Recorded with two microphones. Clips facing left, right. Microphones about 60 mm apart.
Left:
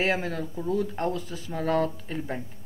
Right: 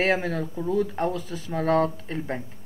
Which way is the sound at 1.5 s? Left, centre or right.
Right.